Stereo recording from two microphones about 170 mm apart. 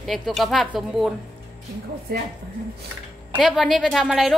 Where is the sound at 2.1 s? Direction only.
70° right (ahead or behind).